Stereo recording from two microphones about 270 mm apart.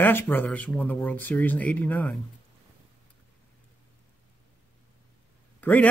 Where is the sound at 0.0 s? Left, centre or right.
Centre.